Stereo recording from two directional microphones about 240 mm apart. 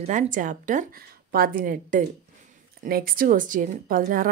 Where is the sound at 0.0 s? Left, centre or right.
Right.